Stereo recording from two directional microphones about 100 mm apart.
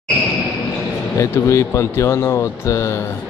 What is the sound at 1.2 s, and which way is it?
Speech, 30° left (ahead or behind).